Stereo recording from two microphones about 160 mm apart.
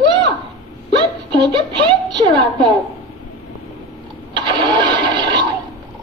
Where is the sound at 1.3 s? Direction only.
30° right (ahead or behind).